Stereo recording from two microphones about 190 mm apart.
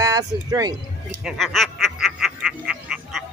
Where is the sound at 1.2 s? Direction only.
Centre (ahead or behind).